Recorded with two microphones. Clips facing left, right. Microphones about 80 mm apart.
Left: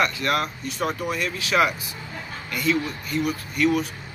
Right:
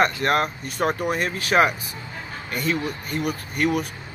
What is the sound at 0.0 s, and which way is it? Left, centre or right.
A man's voice, right.